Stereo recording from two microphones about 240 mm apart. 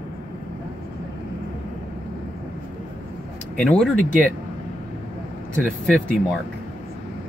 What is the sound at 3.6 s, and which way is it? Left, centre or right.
Speech, centre.